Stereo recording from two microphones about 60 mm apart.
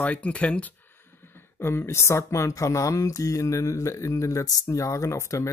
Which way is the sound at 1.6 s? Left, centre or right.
Left.